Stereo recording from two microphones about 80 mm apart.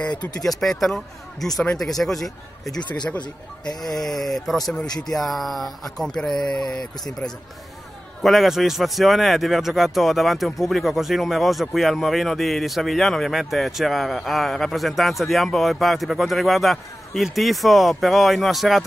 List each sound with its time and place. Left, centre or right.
0.4 s a man's voice: centre
2.8 s speech: left
3.8 s a man's voice: centre